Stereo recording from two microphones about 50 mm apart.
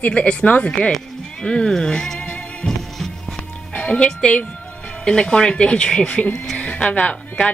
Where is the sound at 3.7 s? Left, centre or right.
Left.